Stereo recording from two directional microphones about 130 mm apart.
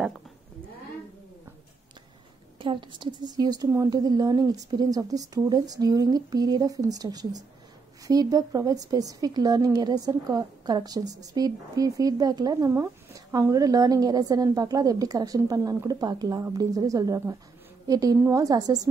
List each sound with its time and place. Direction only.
2.6 s a woman's voice: 40° right (ahead or behind)